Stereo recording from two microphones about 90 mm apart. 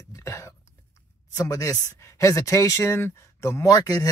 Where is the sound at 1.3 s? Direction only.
40° left (ahead or behind).